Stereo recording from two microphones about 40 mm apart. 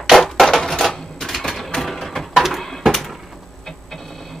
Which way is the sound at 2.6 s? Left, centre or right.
Centre.